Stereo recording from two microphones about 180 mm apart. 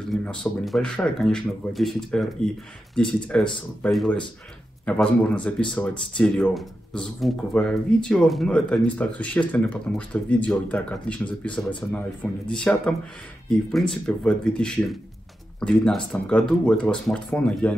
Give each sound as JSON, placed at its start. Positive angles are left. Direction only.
{"t": 0.1, "sound": "speech", "side_deg": 5}